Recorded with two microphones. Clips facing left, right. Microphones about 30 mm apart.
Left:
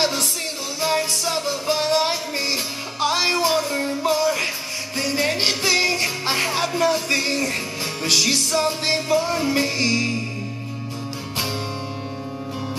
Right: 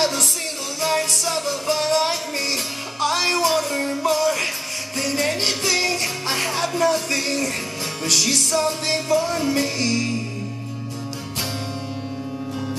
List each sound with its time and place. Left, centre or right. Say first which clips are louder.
0.7 s music: even; centre